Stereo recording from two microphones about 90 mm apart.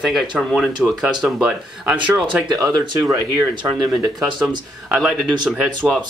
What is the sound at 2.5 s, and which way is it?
Speech, 40° right (ahead or behind).